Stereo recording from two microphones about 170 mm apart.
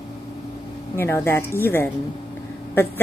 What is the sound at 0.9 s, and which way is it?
Speech, 15° left (ahead or behind).